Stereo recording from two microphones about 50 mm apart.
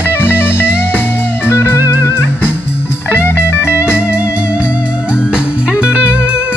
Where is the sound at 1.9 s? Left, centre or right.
Left.